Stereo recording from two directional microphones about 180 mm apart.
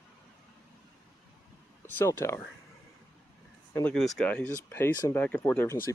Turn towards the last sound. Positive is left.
turn(degrees=10)  # may be behind; listen again after turning